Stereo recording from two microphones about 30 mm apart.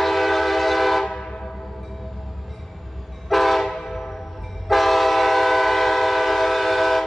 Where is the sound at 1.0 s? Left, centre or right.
Centre.